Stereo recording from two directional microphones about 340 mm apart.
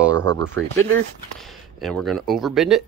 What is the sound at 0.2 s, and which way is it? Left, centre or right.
Speech, centre.